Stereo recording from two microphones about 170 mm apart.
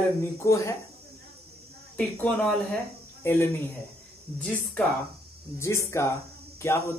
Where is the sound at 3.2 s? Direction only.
15° left (ahead or behind).